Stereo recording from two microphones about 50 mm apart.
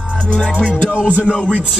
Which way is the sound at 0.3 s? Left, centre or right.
Centre.